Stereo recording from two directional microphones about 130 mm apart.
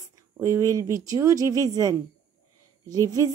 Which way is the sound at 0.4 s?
25° right (ahead or behind).